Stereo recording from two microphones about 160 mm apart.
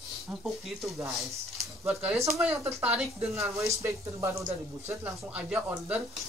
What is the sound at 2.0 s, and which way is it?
Speech, 15° right (ahead or behind).